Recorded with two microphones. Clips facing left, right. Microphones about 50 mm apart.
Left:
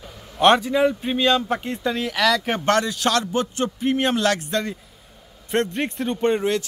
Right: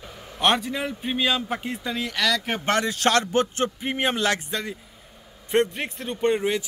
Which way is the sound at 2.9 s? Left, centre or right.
Right.